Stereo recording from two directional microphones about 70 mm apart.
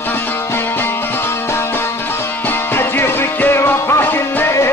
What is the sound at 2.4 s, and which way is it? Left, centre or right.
Music, left.